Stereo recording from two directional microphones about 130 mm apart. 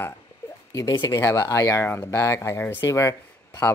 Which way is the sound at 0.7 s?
30° left (ahead or behind).